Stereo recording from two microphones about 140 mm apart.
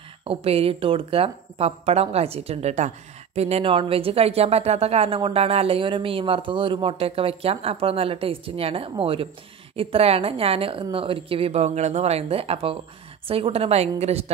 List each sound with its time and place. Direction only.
0.2 s speech: 40° right (ahead or behind)